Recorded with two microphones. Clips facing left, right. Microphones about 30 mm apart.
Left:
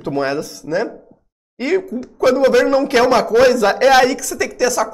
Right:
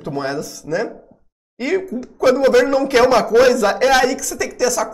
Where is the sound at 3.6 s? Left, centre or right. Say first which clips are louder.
Left 3 dB; centre.